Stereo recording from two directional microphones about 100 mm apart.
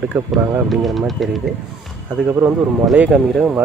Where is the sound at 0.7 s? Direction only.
Centre (ahead or behind).